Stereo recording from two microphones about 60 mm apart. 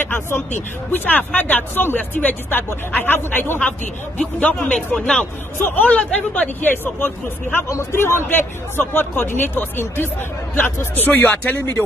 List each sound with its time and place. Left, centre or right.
0.0 s a man's voice: left
4.7 s speech: centre
5.8 s speech: left
7.7 s a man's voice: left